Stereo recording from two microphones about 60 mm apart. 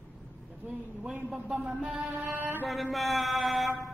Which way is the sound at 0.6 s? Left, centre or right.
Right.